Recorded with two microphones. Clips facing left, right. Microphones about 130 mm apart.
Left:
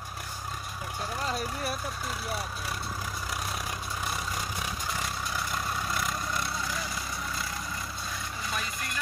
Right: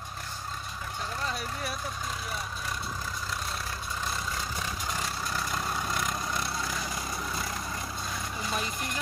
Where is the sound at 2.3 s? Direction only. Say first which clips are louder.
Left 1 dB; 10° left (ahead or behind).